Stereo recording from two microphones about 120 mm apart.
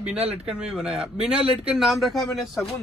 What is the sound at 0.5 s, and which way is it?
Speech, 5° right (ahead or behind).